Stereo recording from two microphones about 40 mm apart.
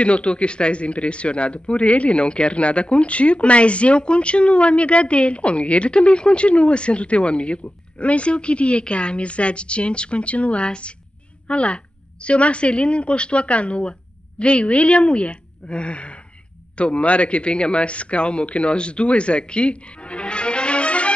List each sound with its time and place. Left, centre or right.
0.0 s speech: left